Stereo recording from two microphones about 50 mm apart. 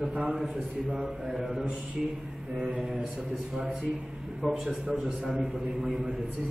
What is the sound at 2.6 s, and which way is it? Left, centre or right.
Speech, right.